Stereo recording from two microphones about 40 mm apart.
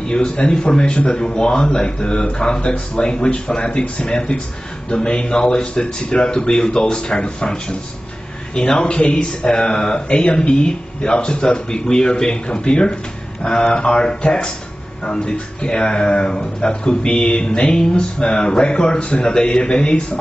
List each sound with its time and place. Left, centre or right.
0.1 s speech: left
15.0 s speech: left